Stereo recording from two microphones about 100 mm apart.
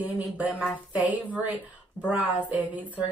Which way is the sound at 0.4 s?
15° right (ahead or behind).